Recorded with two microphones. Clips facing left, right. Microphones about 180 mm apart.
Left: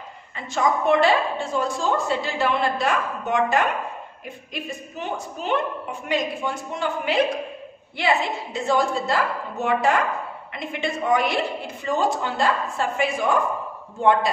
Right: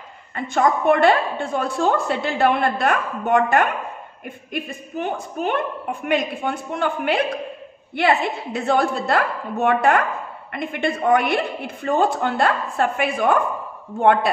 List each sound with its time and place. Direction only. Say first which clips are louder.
0.4 s a woman's voice: right 3 dB; 55° right (ahead or behind)